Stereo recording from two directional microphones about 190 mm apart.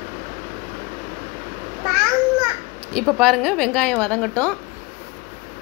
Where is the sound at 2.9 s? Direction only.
Centre (ahead or behind).